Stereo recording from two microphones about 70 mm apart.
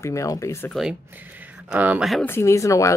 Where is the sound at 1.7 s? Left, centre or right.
Right.